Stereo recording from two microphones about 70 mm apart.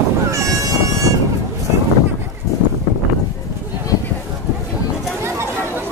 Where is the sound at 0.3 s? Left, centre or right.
Right.